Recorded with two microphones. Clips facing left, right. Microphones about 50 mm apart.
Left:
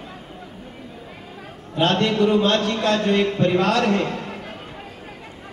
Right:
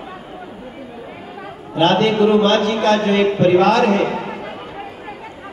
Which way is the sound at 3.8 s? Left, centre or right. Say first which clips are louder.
Right 5 dB; right.